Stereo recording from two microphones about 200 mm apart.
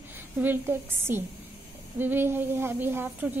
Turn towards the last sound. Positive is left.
turn(degrees=-10)  # may be behind; listen again after turning